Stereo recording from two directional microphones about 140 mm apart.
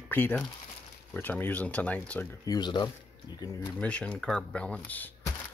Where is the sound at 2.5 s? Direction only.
30° left (ahead or behind).